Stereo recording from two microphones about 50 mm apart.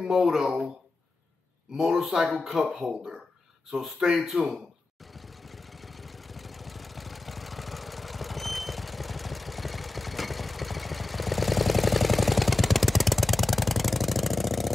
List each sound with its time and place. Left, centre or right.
0.1 s speech: centre
1.8 s speech: centre
4.3 s a man's voice: right
5.1 s vehicle: centre